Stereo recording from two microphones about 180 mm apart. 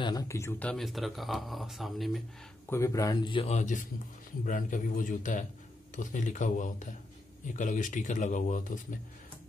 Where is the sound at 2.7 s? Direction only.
15° left (ahead or behind).